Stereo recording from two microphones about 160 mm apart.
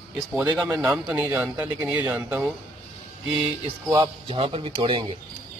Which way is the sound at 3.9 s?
30° right (ahead or behind).